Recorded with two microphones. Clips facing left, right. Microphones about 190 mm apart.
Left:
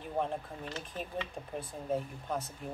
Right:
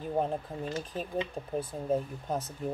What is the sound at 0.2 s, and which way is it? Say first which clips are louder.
Speech: right 1 dB; 35° right (ahead or behind).